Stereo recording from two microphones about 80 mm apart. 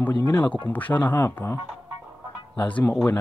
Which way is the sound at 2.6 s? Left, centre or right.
Centre.